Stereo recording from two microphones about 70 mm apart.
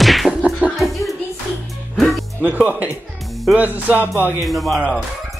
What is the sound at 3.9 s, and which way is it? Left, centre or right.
Speech, right.